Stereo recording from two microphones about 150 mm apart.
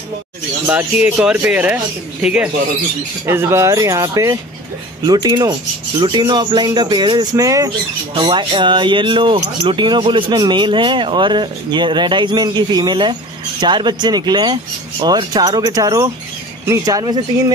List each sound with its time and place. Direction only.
0.7 s speech: 10° right (ahead or behind); by 17.2 s 25° right (ahead or behind)